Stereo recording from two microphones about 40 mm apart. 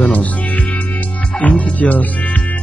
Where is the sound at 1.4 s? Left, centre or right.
Left.